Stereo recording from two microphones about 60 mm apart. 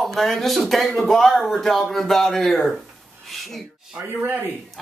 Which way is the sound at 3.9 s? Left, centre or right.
Right.